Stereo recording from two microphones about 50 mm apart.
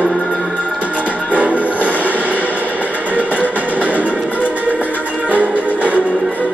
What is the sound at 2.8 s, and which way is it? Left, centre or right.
Music, right.